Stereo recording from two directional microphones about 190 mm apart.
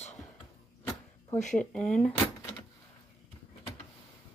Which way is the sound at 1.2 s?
40° left (ahead or behind).